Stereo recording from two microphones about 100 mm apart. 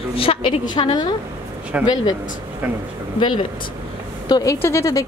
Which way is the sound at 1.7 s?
15° right (ahead or behind).